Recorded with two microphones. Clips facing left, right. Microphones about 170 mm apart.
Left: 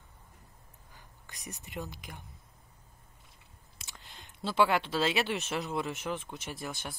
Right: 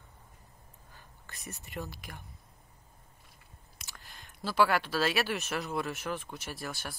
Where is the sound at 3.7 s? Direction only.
20° left (ahead or behind).